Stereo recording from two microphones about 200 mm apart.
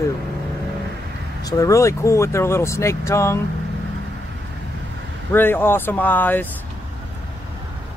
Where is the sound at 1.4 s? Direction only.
15° left (ahead or behind).